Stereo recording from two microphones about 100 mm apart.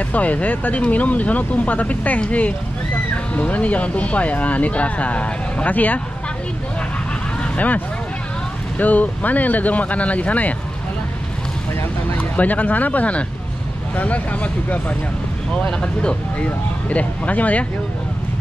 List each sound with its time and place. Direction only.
0.1 s speech: 15° left (ahead or behind)
7.4 s speech: 15° left (ahead or behind)
12.1 s speech: 15° left (ahead or behind)